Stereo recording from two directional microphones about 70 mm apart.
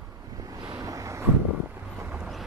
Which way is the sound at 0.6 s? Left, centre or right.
Right.